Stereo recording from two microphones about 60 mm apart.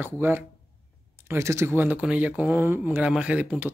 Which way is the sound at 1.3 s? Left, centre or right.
Right.